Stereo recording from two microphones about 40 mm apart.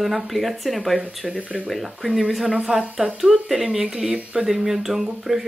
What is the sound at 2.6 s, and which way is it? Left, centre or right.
Speech, centre.